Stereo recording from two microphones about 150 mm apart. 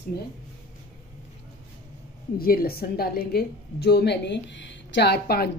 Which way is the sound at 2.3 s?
85° left.